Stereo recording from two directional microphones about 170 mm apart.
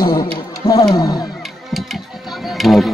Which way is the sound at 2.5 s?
Centre (ahead or behind).